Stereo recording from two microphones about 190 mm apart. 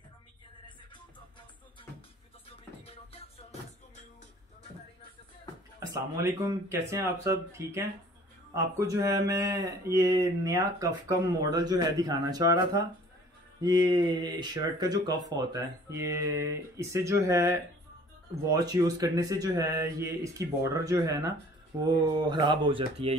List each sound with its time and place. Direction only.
2.8 s music: 30° left (ahead or behind)
5.8 s speech: 20° right (ahead or behind)